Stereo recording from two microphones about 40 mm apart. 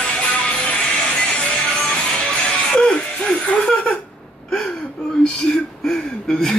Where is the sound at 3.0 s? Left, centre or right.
Left.